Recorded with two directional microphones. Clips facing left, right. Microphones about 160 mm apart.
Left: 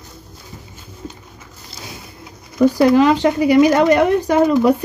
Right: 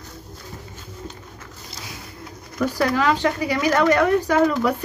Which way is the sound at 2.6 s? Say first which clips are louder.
Left 9 dB; 20° left (ahead or behind).